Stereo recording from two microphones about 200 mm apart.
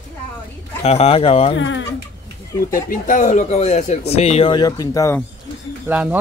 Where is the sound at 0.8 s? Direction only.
30° left (ahead or behind).